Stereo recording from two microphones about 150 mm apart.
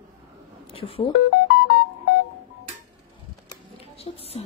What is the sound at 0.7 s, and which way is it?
Speech, 40° left (ahead or behind).